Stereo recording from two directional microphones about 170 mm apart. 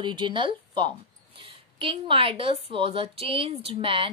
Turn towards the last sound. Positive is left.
turn(degrees=-30)  # may be behind; listen again after turning